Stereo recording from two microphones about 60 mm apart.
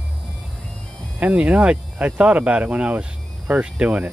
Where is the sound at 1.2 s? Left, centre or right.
Right.